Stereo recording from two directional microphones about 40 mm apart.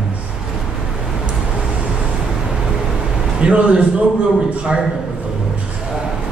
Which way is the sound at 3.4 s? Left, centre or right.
Right.